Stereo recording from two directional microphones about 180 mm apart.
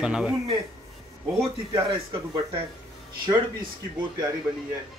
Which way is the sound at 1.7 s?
20° right (ahead or behind).